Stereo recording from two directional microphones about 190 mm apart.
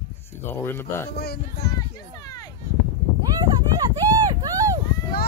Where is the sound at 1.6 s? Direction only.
20° left (ahead or behind).